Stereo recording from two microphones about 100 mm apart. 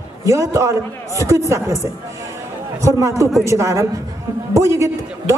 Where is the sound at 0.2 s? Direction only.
30° right (ahead or behind).